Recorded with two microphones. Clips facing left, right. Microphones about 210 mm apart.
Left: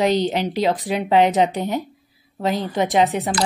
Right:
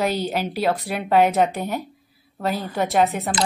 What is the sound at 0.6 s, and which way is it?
A woman's voice, 15° left (ahead or behind).